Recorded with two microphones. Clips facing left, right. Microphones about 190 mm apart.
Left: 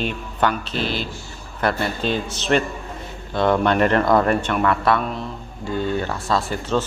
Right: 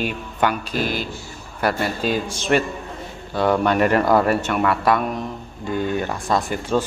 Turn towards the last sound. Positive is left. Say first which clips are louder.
# right 1 dB
turn(degrees=-15)  # may be behind; listen again after turning